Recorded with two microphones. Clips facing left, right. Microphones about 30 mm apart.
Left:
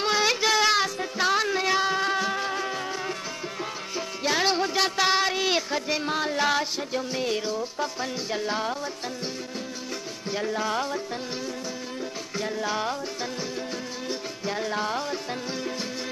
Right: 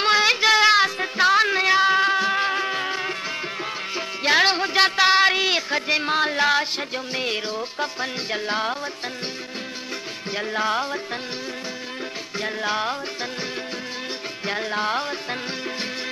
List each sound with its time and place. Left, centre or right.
0.0 s a sound: right
1.2 s music: right
10.3 s music: right
12.4 s music: right
14.4 s music: right